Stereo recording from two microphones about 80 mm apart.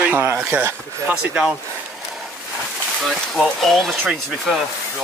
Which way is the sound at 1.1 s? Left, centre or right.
Right.